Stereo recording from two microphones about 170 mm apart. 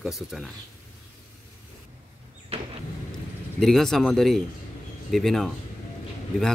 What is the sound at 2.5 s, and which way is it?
Vehicle, 35° right (ahead or behind).